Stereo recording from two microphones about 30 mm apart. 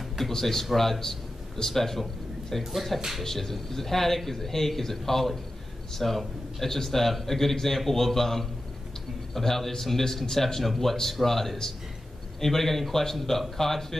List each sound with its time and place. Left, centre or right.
0.3 s a man's voice: centre
3.3 s a man's voice: centre